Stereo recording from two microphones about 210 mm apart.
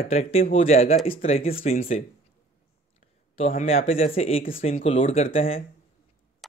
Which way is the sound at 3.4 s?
30° left (ahead or behind).